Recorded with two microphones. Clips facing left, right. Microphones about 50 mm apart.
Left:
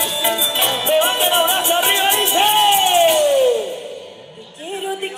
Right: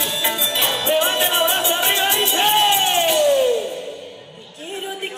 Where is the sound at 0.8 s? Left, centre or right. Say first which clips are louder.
Left 3 dB; left.